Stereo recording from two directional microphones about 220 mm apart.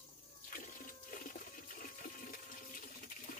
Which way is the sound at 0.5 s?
40° left (ahead or behind).